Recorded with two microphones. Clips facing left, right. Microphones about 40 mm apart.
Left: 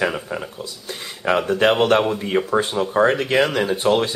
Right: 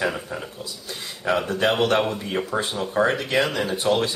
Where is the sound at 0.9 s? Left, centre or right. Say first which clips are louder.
Left 3 dB; left.